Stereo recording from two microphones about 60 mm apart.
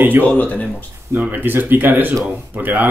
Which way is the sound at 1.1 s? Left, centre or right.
Right.